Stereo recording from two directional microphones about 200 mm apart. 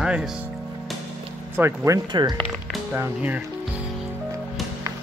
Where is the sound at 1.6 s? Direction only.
15° right (ahead or behind).